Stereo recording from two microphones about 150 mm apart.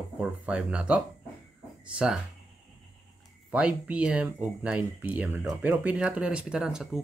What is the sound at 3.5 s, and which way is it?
Speech, 10° right (ahead or behind).